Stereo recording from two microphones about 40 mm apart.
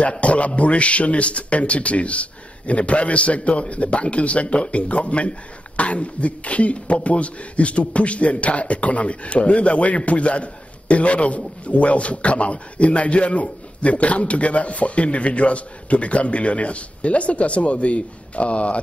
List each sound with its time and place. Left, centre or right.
0.0 s speech: left